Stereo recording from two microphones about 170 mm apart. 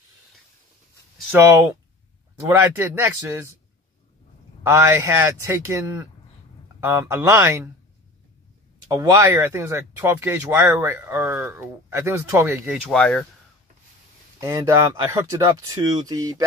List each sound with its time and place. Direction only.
2.4 s speech: 15° right (ahead or behind)
4.6 s speech: 15° right (ahead or behind)
8.8 s speech: 20° right (ahead or behind)
12.8 s speech: 5° left (ahead or behind)
14.4 s speech: 20° right (ahead or behind)